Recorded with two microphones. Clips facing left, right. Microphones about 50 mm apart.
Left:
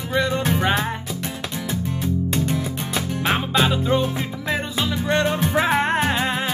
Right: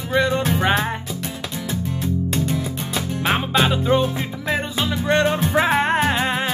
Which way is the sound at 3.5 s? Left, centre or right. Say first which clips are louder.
Right 2 dB; right.